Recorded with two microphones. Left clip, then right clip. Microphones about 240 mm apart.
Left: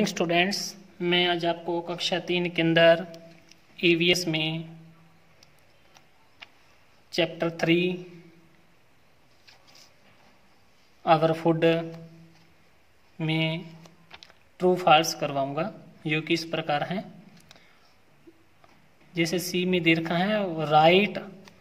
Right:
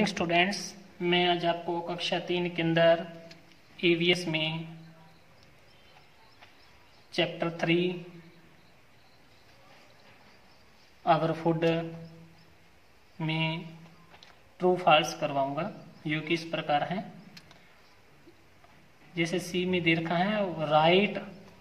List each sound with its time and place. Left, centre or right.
0.0 s speech: left
7.1 s speech: left
11.1 s speech: left
13.2 s a man's voice: left
19.1 s speech: left